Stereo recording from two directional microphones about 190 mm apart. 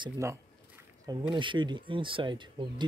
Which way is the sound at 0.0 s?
15° right (ahead or behind).